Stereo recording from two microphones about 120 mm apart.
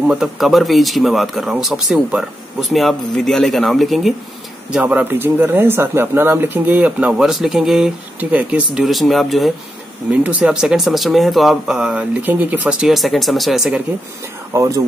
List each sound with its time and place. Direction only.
0.0 s speech: 5° right (ahead or behind)
4.6 s speech: 10° right (ahead or behind)
8.7 s speech: centre (ahead or behind)
14.5 s speech: 25° right (ahead or behind)